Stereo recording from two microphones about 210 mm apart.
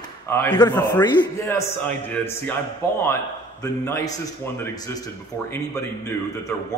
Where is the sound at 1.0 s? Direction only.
20° left (ahead or behind).